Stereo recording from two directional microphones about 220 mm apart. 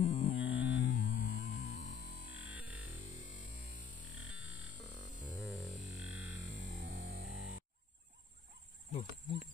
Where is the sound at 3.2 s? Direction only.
35° left (ahead or behind).